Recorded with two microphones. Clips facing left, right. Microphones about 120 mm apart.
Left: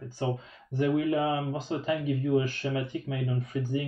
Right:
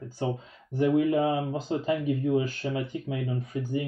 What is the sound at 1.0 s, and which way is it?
Speech, 30° right (ahead or behind).